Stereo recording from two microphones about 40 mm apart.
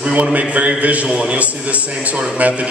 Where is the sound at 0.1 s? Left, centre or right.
Right.